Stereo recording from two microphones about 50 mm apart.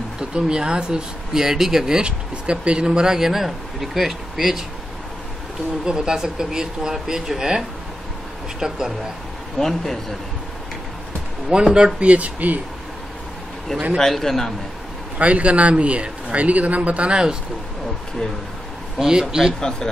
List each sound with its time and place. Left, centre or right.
0.2 s speech: centre
5.9 s speech: centre
9.6 s a man's voice: centre
11.5 s a man's voice: centre
13.9 s a man's voice: centre
15.1 s a man's voice: right
18.9 s speech: centre